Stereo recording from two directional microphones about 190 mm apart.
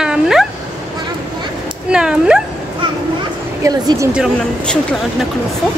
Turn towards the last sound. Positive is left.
turn(degrees=5)  # may be behind; listen again after turning